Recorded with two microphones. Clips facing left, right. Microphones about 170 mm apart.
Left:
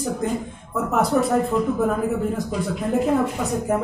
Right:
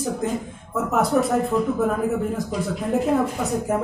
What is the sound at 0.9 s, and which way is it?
Speech, centre (ahead or behind).